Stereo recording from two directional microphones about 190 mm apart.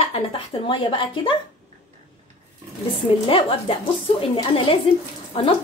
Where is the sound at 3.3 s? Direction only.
30° left (ahead or behind).